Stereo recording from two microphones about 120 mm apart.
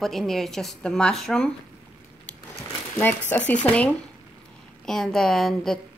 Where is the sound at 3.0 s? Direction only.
15° left (ahead or behind).